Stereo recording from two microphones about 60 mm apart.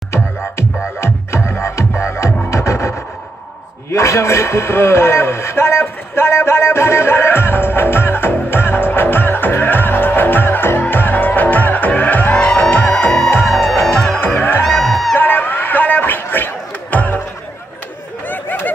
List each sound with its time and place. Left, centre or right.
1.0 s music: left
3.9 s a man's voice: left
10.8 s music: left
13.5 s music: centre
14.2 s music: left
14.6 s music: centre
15.1 s a sound: left
18.2 s a sound: left